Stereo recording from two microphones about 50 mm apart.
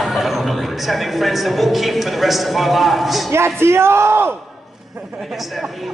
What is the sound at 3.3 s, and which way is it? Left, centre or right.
Speech, right.